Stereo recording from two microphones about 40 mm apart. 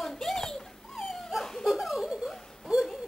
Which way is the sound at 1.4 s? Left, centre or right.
Centre.